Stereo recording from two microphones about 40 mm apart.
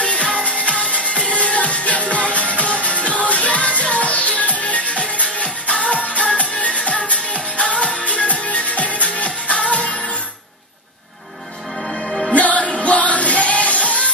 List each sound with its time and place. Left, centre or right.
0.0 s music: left
11.9 s music: centre
12.4 s music: left